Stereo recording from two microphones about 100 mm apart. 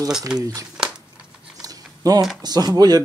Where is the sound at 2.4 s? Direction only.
45° right (ahead or behind).